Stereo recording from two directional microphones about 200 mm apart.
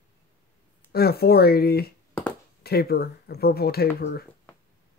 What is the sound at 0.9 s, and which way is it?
Speech, 50° left (ahead or behind).